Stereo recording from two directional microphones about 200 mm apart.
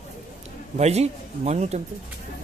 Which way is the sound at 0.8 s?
35° right (ahead or behind).